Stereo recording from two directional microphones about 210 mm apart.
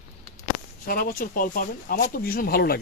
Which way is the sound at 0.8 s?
45° left (ahead or behind).